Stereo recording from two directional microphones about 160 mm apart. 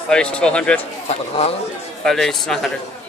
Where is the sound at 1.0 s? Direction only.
45° left (ahead or behind).